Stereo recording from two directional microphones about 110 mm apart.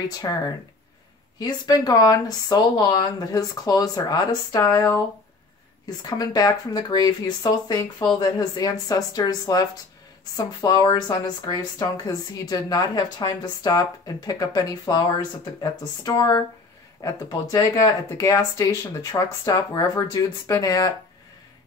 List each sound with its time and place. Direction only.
0.2 s speech: 35° left (ahead or behind)
6.0 s speech: 35° left (ahead or behind)
17.0 s speech: 30° left (ahead or behind)
19.1 s speech: 40° left (ahead or behind)